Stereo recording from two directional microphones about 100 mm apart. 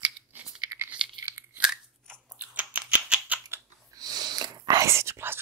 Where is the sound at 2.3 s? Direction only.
15° right (ahead or behind).